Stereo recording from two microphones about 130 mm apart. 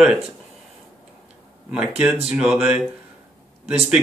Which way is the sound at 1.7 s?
5° right (ahead or behind).